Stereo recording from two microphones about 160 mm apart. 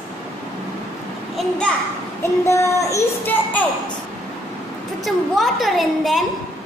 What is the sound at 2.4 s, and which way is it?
A child's voice, 20° left (ahead or behind).